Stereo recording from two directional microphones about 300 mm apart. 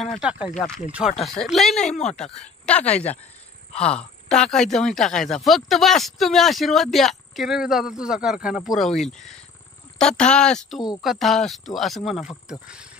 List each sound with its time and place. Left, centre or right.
0.0 s speech: centre
2.0 s speech: left
2.2 s speech: centre
4.3 s speech: centre